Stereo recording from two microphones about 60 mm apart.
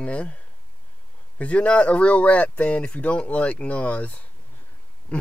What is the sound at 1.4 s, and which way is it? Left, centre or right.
Speech, left.